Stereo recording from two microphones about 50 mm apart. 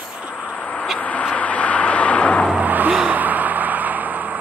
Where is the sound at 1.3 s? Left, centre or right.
Left.